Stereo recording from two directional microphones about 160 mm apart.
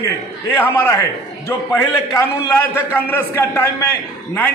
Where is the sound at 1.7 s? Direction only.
15° left (ahead or behind).